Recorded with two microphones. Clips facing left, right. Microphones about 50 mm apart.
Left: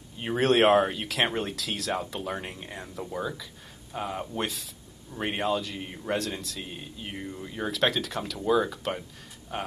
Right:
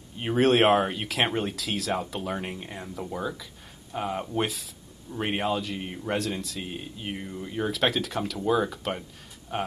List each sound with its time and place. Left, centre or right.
0.2 s speech: centre
6.1 s speech: centre
6.6 s speech: centre